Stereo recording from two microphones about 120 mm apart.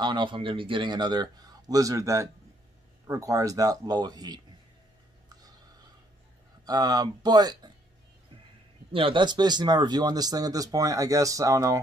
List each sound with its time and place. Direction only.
0.0 s speech: 40° right (ahead or behind)
6.6 s speech: 30° right (ahead or behind)
8.9 s speech: 45° right (ahead or behind); by 11.8 s 25° right (ahead or behind)